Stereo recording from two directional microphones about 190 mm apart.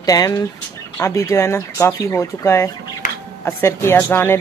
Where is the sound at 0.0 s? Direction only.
20° left (ahead or behind).